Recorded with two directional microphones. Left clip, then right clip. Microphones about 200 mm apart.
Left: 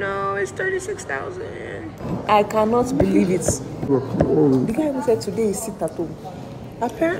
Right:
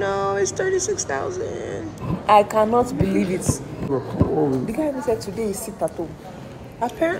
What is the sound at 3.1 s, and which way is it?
Speech, 5° left (ahead or behind).